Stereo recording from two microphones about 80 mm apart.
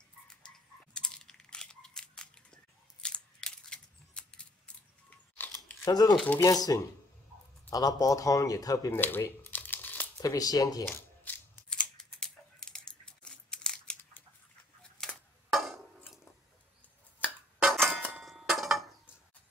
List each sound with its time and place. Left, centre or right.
0.9 s crunch: centre
5.9 s speech: left
8.9 s speech: left
9.4 s crumpling: left
10.2 s speech: left
10.9 s shuffling cards: left
11.7 s a sound: centre
17.6 s a sound: centre